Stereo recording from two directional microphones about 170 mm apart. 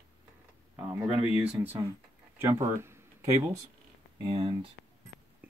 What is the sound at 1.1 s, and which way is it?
Speech, 5° right (ahead or behind).